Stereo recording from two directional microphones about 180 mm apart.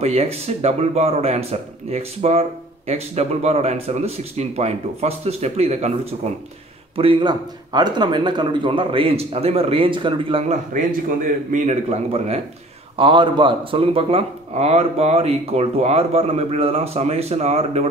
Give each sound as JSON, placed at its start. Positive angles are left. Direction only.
{"t": 0.0, "sound": "speech", "side_deg": -35}
{"t": 10.7, "sound": "speech", "side_deg": -50}